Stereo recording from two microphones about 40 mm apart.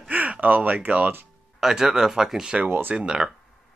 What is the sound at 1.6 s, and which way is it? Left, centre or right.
Speech, centre.